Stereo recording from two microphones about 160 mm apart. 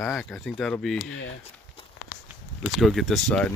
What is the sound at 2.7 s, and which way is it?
Speech, centre (ahead or behind).